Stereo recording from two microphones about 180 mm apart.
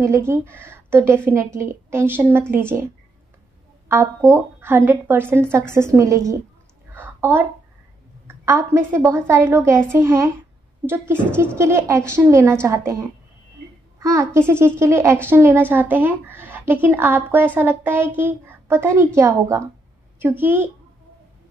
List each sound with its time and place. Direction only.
0.0 s a child's voice: 15° right (ahead or behind)
3.9 s a child's voice: 15° right (ahead or behind)
6.9 s a sound: 10° right (ahead or behind)
8.3 s a child's voice: 15° right (ahead or behind)
11.3 s a child's voice: 15° right (ahead or behind)